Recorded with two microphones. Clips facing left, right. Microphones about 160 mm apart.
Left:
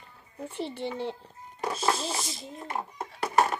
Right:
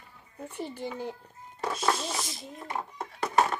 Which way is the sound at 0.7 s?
25° left (ahead or behind).